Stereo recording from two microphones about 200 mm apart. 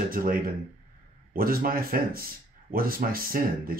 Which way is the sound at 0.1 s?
45° right (ahead or behind).